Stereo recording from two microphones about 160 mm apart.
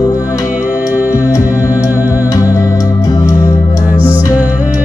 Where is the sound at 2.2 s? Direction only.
20° left (ahead or behind).